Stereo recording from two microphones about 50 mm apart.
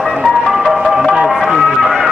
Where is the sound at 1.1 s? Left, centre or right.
Right.